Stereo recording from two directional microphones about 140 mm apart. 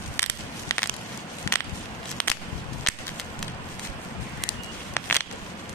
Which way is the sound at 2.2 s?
10° left (ahead or behind).